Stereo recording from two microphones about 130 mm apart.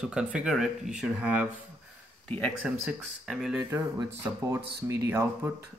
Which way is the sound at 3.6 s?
20° right (ahead or behind).